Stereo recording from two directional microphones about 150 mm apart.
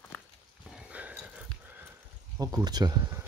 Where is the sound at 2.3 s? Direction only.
25° right (ahead or behind).